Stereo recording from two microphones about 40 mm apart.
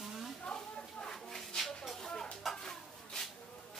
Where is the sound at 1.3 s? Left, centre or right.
Centre.